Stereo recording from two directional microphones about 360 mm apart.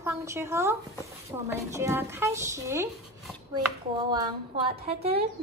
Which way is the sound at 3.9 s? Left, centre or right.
Centre.